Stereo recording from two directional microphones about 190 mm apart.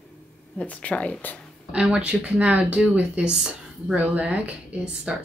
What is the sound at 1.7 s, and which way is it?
Speech, 5° right (ahead or behind).